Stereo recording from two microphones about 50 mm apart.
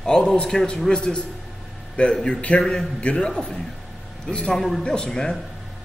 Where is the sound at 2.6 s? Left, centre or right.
Centre.